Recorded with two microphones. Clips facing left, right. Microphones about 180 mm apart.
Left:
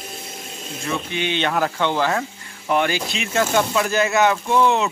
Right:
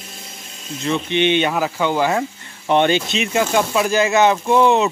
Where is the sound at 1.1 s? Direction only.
20° right (ahead or behind).